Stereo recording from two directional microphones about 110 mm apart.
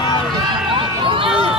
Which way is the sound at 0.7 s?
50° right (ahead or behind).